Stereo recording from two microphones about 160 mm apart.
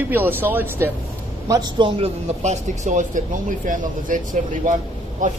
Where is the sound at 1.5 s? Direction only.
25° right (ahead or behind).